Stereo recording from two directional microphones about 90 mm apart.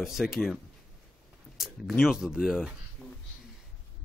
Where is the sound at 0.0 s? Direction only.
5° right (ahead or behind).